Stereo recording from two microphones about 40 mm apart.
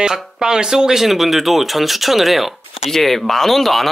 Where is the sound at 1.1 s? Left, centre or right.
Centre.